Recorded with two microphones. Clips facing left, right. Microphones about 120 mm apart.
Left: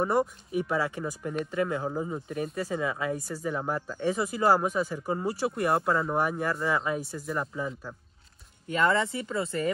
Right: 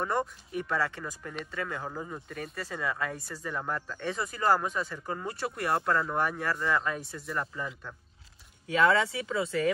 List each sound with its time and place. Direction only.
0.0 s speech: 10° left (ahead or behind)
8.9 s speech: centre (ahead or behind)